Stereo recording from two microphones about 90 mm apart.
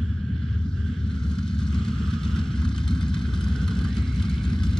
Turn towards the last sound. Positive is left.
turn(degrees=5)  # may be behind; listen again after turning